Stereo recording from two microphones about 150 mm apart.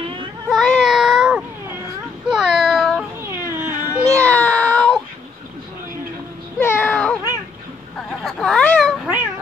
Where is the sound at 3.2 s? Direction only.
15° right (ahead or behind).